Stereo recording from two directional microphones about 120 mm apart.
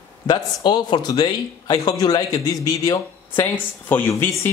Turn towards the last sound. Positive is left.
turn(degrees=15)  # may be behind; listen again after turning